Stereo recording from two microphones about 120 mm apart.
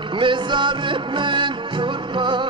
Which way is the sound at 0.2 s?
40° right (ahead or behind).